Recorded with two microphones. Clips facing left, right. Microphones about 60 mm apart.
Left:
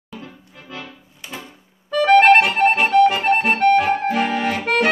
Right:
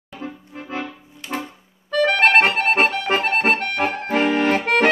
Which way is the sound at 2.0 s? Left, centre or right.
Centre.